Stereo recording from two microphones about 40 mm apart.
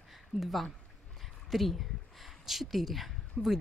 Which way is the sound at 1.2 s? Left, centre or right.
Centre.